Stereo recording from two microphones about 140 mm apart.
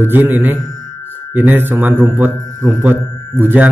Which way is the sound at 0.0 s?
15° right (ahead or behind).